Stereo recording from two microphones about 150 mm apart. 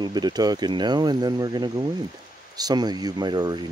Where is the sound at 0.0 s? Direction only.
30° right (ahead or behind).